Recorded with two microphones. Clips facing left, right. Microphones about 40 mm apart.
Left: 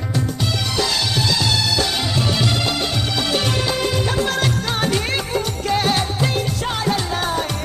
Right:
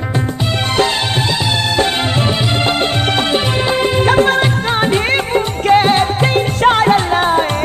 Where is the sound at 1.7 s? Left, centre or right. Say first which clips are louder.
Right 6 dB; right.